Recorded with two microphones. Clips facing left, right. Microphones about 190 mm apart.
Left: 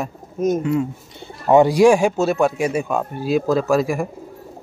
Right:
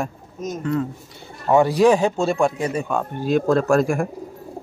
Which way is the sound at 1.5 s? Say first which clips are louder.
Left 3 dB; 15° left (ahead or behind).